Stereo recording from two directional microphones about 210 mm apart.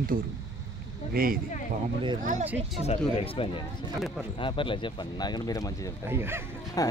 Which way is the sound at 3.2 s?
25° left (ahead or behind).